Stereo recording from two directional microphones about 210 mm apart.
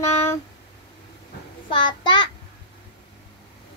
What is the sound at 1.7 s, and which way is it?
Speech, 20° left (ahead or behind).